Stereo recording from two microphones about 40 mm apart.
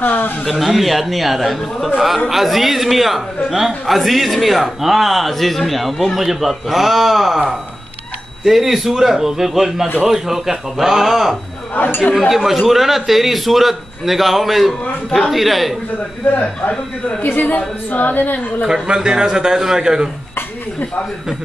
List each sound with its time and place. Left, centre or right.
0.0 s speech: left
0.5 s a man's voice: centre
11.7 s speech: left
12.2 s a man's voice: centre
14.7 s a man's voice: centre
15.3 s a man's voice: centre
17.2 s speech: left
18.7 s a man's voice: centre